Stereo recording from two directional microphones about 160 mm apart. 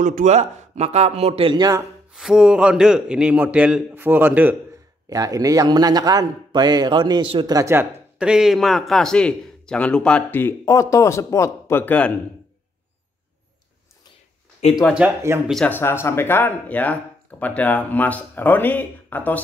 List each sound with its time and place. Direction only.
0.0 s speech: 50° right (ahead or behind); by 1.8 s 25° right (ahead or behind)
2.1 s a man's voice: 5° right (ahead or behind); by 7.8 s 20° right (ahead or behind)
8.2 s a man's voice: 5° right (ahead or behind); by 12.1 s 10° left (ahead or behind)
15.0 s a man's voice: 15° right (ahead or behind)
15.6 s a man's voice: 15° left (ahead or behind)